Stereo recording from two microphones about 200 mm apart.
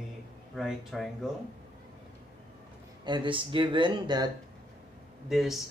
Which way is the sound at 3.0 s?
25° right (ahead or behind).